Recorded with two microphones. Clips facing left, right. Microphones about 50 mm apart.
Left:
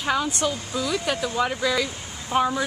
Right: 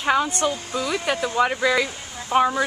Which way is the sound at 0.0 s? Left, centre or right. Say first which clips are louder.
Right 3 dB; centre.